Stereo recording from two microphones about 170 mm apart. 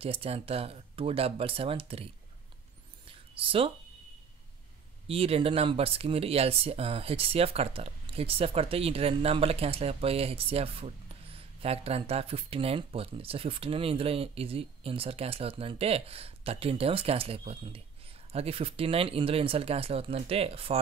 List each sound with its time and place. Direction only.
0.0 s speech: 35° right (ahead or behind)
3.1 s a sound: 30° right (ahead or behind)
5.0 s speech: 35° right (ahead or behind)